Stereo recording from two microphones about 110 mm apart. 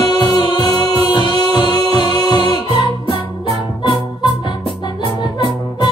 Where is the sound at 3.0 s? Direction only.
50° left (ahead or behind).